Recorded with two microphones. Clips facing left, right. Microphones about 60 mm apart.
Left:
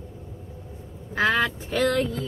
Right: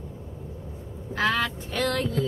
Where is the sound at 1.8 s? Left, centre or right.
Centre.